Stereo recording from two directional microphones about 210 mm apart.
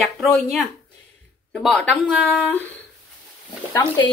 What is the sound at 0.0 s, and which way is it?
Speech, centre (ahead or behind).